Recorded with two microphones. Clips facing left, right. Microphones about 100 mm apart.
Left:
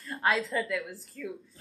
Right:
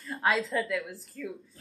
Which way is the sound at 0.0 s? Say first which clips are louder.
Even; centre (ahead or behind).